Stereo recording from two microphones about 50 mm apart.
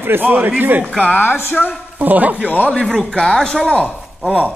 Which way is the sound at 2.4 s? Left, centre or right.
Left.